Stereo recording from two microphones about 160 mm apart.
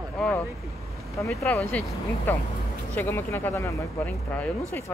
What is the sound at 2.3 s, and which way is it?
Speech, 10° left (ahead or behind).